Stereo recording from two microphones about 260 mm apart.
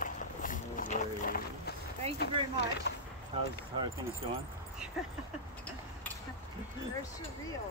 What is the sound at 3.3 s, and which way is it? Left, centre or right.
Speech, right.